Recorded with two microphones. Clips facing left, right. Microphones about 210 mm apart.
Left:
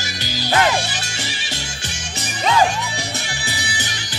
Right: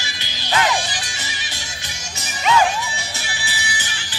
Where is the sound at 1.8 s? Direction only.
35° left (ahead or behind).